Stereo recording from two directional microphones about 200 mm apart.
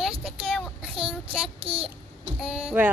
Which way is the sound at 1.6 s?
30° right (ahead or behind).